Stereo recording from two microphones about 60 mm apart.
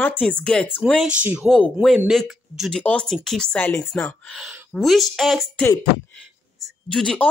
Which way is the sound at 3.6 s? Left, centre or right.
Left.